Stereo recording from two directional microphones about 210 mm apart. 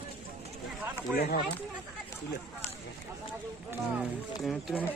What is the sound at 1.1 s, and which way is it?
Speech, 45° left (ahead or behind).